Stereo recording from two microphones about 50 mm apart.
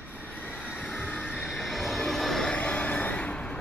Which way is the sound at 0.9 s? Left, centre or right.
Left.